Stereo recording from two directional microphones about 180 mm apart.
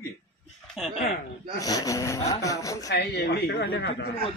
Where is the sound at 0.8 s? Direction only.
Centre (ahead or behind).